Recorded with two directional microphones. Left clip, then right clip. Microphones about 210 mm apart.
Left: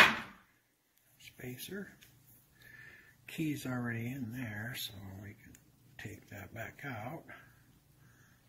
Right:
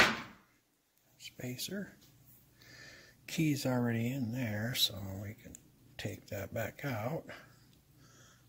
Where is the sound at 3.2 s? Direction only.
60° right (ahead or behind).